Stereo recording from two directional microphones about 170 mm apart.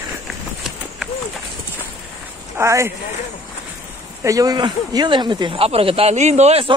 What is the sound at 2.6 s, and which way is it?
Speech, 15° right (ahead or behind).